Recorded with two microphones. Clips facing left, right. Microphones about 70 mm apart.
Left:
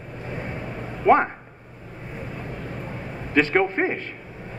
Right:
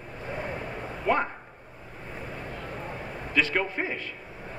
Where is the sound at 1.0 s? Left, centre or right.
Left.